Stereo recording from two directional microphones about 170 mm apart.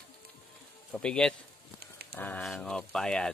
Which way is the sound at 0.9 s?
5° left (ahead or behind).